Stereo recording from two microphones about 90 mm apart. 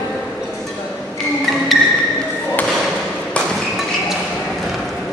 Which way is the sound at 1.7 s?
Centre (ahead or behind).